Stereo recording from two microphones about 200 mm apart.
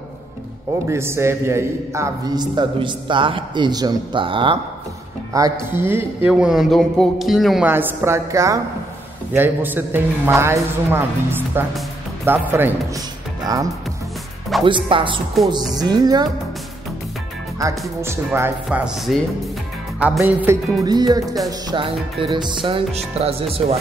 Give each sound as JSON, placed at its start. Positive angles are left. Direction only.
{"t": 0.8, "sound": "a man's voice", "side_deg": -15}
{"t": 14.6, "sound": "a man's voice", "side_deg": -25}
{"t": 17.6, "sound": "a man's voice", "side_deg": -15}